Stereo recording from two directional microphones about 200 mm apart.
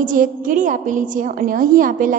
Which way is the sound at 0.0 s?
40° right (ahead or behind).